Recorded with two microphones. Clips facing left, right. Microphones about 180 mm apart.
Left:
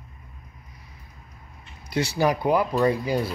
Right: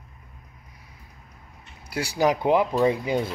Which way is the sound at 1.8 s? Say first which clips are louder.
Even; 10° right (ahead or behind).